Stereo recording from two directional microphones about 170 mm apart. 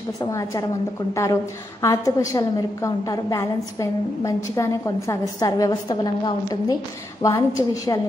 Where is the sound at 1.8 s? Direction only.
20° left (ahead or behind).